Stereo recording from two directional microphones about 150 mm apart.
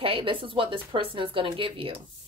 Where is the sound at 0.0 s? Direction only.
35° right (ahead or behind).